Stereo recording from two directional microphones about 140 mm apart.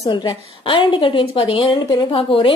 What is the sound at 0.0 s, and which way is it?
A woman's voice, 30° left (ahead or behind).